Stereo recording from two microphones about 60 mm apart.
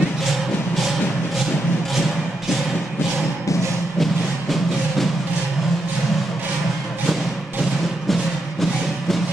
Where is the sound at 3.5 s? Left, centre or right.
Left.